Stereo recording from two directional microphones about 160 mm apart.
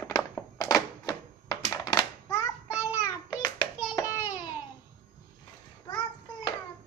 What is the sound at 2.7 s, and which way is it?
Child singing, 10° right (ahead or behind).